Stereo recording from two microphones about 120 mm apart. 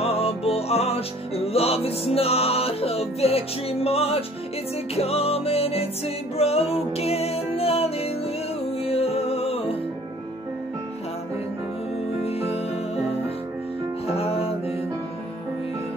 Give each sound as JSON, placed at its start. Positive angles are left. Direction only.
{"t": 0.0, "sound": "music", "side_deg": 55}
{"t": 12.2, "sound": "music", "side_deg": 60}
{"t": 14.0, "sound": "music", "side_deg": 55}